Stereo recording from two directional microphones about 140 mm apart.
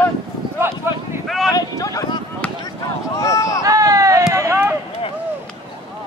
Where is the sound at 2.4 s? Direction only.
10° left (ahead or behind).